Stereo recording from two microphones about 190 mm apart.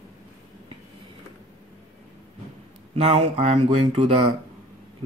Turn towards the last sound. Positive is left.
turn(degrees=-30)  # may be behind; listen again after turning